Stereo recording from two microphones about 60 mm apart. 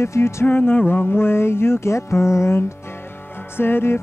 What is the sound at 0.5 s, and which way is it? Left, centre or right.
Music, left.